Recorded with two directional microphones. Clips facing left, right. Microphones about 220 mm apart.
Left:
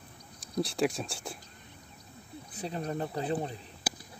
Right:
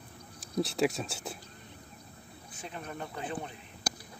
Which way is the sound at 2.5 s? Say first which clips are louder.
Left 7 dB; 35° left (ahead or behind).